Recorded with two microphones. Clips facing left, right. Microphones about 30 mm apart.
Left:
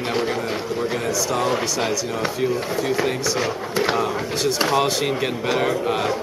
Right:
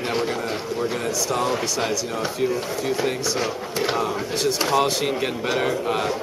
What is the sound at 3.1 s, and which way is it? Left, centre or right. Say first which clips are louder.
Speech: left 2 dB; centre.